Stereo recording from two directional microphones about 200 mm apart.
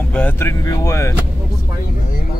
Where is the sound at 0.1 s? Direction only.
10° left (ahead or behind).